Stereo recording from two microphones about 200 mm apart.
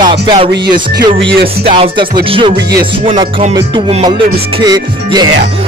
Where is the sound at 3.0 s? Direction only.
25° right (ahead or behind).